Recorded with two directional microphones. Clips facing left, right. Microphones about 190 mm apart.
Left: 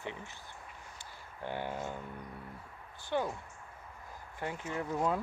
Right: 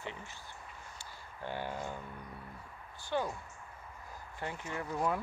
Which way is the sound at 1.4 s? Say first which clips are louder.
Left 1 dB; 20° left (ahead or behind).